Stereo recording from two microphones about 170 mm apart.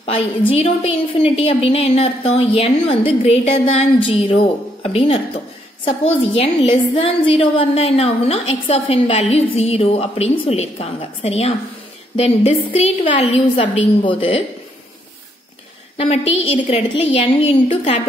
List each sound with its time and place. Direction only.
0.5 s a woman's voice: 35° left (ahead or behind)
16.0 s a woman's voice: 35° left (ahead or behind)